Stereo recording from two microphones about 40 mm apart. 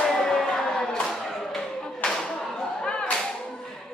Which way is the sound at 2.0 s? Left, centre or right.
Left.